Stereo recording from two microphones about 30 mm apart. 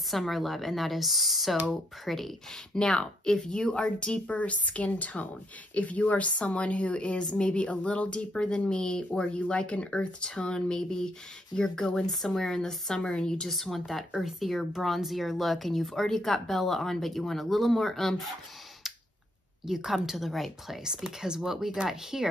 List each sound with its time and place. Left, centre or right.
0.1 s speech: centre
2.5 s speech: left
4.4 s speech: left
7.7 s speech: left
9.2 s speech: left; by 13.0 s centre
13.0 s speech: left
13.5 s speech: centre
19.6 s a woman's voice: centre
20.8 s a woman's voice: right